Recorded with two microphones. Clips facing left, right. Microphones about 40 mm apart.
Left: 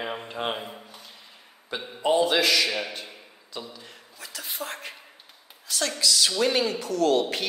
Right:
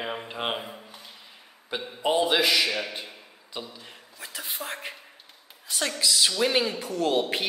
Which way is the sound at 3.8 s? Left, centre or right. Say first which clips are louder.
Right 1 dB; right.